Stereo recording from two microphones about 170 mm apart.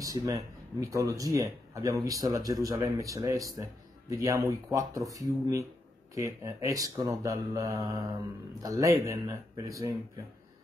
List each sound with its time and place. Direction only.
0.0 s speech: 20° right (ahead or behind)